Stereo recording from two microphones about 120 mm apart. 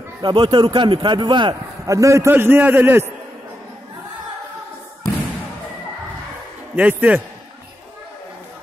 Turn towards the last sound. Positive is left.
turn(degrees=-15)  # may be behind; listen again after turning